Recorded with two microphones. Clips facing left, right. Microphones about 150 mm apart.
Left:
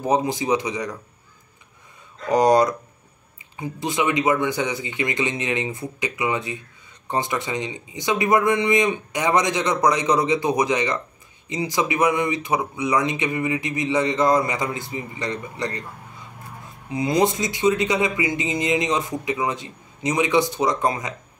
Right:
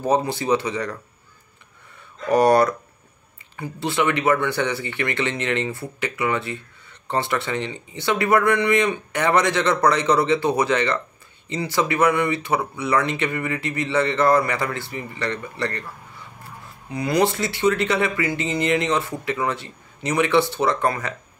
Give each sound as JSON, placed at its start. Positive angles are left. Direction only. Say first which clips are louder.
{"t": 0.0, "sound": "speech", "louder": "even", "side_deg": 15}
{"t": 2.2, "sound": "speech", "louder": "right 1 dB", "side_deg": 15}
{"t": 16.9, "sound": "speech", "louder": "even", "side_deg": 20}